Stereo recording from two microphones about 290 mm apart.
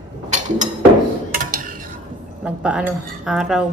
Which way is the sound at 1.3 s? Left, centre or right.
Right.